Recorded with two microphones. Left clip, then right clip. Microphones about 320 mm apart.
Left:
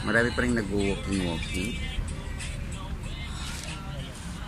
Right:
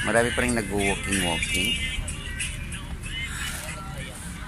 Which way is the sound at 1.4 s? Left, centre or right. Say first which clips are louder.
Right 9 dB; centre.